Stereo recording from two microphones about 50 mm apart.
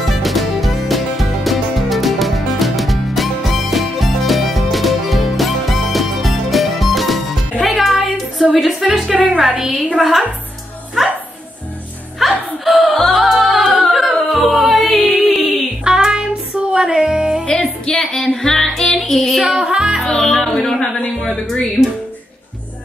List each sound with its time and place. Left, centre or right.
0.0 s music: centre
9.1 s music: right
9.9 s a woman's voice: centre
11.0 s music: centre
12.2 s music: centre
15.8 s child singing: centre
16.7 s music: centre
17.5 s music: left
17.9 s music: centre
19.4 s music: centre
20.1 s music: centre
21.2 s a sound: centre